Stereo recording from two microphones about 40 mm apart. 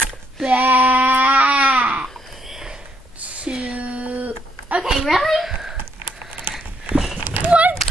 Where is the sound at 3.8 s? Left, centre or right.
Right.